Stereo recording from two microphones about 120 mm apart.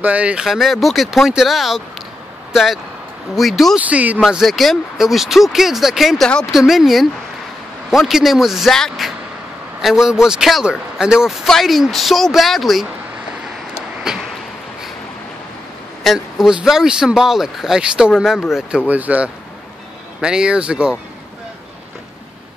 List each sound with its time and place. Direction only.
0.0 s speech: 10° right (ahead or behind)
3.8 s speech: 15° right (ahead or behind)
4.2 s speech: centre (ahead or behind)
14.0 s a sound: 5° right (ahead or behind)
16.0 s speech: centre (ahead or behind)